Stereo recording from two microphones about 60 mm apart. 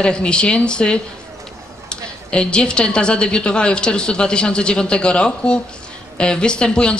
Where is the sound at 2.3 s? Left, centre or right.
Centre.